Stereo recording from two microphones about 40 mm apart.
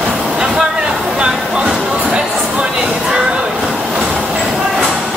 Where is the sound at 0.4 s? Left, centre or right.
Centre.